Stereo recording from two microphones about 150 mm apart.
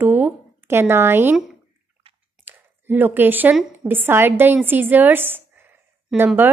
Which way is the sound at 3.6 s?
10° right (ahead or behind).